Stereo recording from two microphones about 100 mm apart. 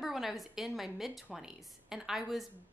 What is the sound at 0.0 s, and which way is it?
A woman's voice, centre (ahead or behind).